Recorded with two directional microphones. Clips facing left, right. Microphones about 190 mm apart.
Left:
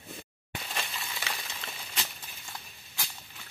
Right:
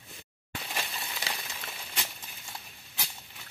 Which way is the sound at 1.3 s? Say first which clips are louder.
Right 1 dB; 35° right (ahead or behind).